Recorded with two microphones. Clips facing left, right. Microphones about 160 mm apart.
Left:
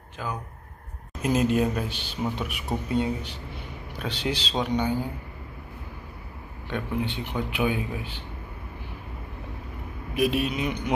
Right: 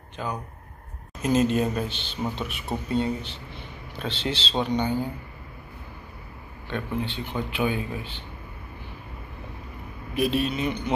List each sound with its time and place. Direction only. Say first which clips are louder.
0.2 s speech: right 2 dB; 5° left (ahead or behind)
6.7 s speech: left 1 dB; 15° left (ahead or behind)
10.1 s speech: even; 10° left (ahead or behind)